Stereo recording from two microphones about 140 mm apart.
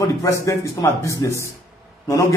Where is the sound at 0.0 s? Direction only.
20° left (ahead or behind).